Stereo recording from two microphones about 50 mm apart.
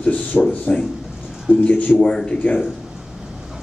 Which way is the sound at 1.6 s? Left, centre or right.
Left.